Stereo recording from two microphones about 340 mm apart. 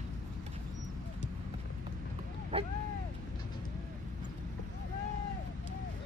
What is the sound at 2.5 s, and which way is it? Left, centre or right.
Speech, centre.